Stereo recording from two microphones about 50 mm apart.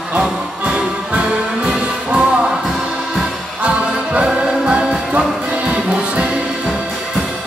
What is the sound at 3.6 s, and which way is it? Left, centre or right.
Music, right.